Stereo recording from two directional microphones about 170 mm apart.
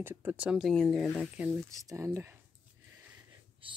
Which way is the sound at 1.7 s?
20° right (ahead or behind).